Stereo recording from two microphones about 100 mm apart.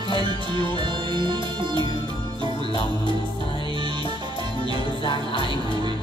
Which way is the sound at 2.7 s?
60° left (ahead or behind).